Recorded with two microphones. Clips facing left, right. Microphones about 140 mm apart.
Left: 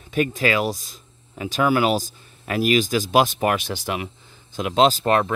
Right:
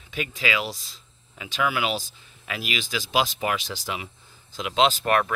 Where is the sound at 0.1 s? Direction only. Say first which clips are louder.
Left 7 dB; 45° left (ahead or behind).